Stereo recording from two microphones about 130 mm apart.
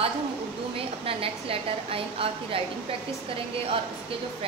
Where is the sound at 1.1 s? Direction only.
45° right (ahead or behind).